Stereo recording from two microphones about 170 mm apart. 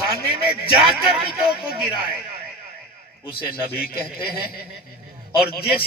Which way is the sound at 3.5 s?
60° left (ahead or behind).